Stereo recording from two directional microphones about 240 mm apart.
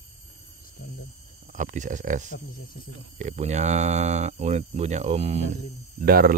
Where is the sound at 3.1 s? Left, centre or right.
Right.